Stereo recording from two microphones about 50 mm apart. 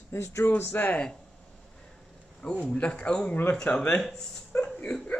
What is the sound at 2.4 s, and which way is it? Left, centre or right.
Speech, left.